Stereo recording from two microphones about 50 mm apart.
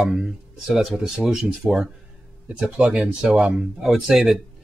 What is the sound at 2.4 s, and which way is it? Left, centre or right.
Speech, right.